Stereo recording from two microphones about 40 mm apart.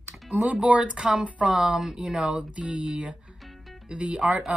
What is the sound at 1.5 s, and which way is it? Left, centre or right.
Speech, centre.